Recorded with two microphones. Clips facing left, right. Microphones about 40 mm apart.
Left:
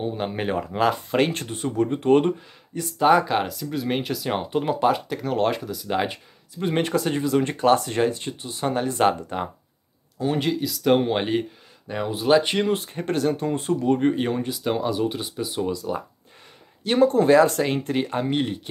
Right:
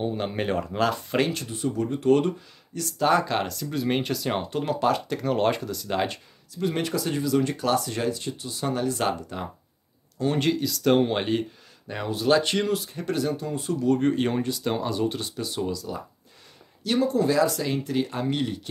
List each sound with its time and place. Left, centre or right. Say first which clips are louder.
0.0 s speech: left 1 dB; centre
1.1 s speech: left 3 dB; left; by 4.5 s centre
4.5 s speech: left 4 dB; centre
5.1 s speech: even; centre
6.5 s speech: left 3 dB; left
10.1 s speech: even; centre
12.7 s speech: left 2 dB; left
13.8 s speech: even; left
15.7 s speech: left 5 dB; left